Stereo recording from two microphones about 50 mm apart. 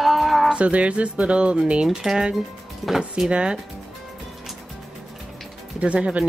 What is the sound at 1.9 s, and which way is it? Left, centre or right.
Speech, centre.